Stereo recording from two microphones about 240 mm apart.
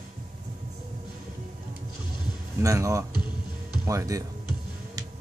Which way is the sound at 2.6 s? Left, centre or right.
Centre.